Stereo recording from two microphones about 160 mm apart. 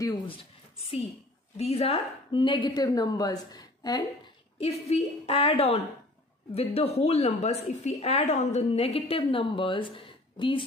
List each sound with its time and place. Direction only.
0.3 s a woman's voice: 35° left (ahead or behind)
4.6 s a woman's voice: 40° left (ahead or behind)